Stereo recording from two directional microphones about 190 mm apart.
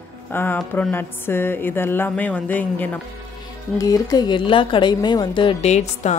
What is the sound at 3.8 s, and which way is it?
Speech, 20° left (ahead or behind).